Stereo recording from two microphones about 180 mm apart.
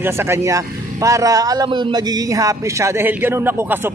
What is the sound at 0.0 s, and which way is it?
Speech, 15° right (ahead or behind).